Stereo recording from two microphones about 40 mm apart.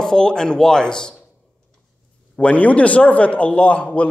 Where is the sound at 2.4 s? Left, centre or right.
Left.